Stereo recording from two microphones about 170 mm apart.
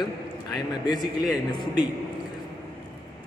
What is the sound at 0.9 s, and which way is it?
Speech, centre (ahead or behind).